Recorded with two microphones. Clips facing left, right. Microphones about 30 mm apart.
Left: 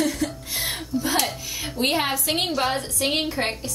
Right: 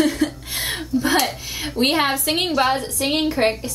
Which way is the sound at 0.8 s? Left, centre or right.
Right.